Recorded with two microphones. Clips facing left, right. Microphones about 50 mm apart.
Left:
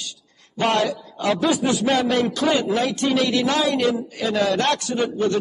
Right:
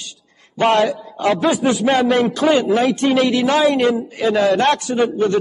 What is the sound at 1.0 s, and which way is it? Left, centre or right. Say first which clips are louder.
A man's voice: right 4 dB; right.